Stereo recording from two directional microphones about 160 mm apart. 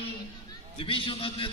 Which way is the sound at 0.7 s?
35° left (ahead or behind).